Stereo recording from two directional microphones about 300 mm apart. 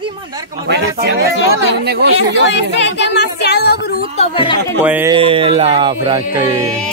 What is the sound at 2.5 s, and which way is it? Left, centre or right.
Speech, left.